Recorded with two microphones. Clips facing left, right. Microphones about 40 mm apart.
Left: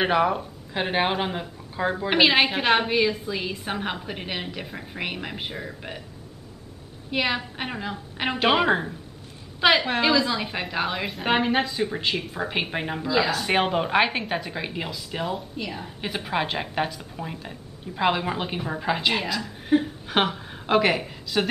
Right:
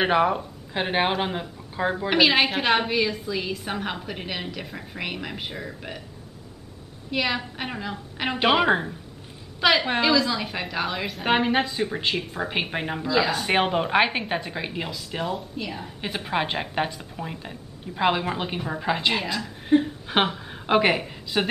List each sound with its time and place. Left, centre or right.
0.0 s a woman's voice: centre
2.0 s a woman's voice: centre
7.1 s a woman's voice: centre
8.4 s a woman's voice: centre
9.6 s a woman's voice: centre